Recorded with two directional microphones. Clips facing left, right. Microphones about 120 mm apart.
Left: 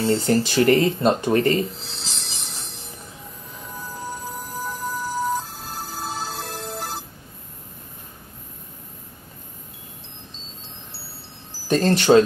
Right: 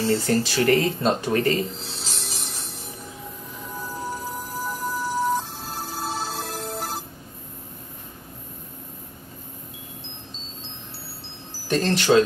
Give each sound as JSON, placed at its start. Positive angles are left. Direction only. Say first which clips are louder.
{"t": 0.1, "sound": "speech", "louder": "left 3 dB", "side_deg": 25}
{"t": 1.3, "sound": "speech", "louder": "left 2 dB", "side_deg": 35}
{"t": 1.8, "sound": "a sound", "louder": "right 2 dB", "side_deg": 0}
{"t": 3.8, "sound": "music", "louder": "right 1 dB", "side_deg": 0}
{"t": 11.7, "sound": "speech", "louder": "left 4 dB", "side_deg": 30}